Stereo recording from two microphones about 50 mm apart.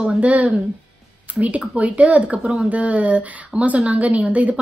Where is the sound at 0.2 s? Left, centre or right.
Right.